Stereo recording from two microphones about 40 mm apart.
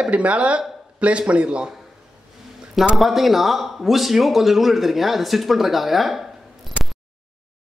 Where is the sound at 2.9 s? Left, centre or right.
Centre.